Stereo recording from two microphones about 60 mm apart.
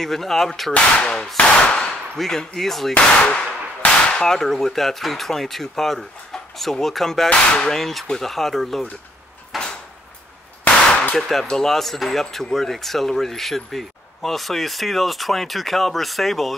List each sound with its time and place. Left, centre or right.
0.0 s speech: centre
1.1 s a sound: centre
2.1 s speech: centre
2.9 s gunshot: centre
7.2 s speech: centre
9.5 s a sound: centre
11.1 s speech: centre